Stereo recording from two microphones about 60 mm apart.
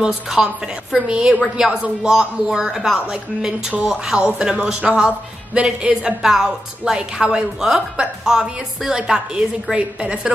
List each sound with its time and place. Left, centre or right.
0.0 s speech: centre